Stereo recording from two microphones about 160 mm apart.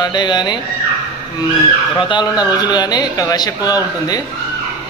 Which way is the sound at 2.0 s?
25° left (ahead or behind).